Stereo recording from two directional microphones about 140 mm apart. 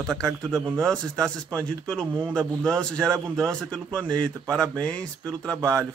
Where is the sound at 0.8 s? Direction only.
5° left (ahead or behind).